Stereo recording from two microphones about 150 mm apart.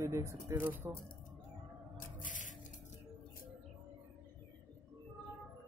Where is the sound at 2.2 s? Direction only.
60° left (ahead or behind).